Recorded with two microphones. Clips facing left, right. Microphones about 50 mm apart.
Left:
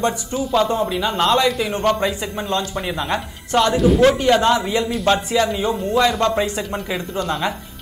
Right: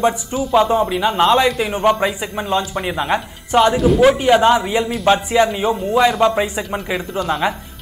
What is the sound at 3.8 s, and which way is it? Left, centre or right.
Speech, centre.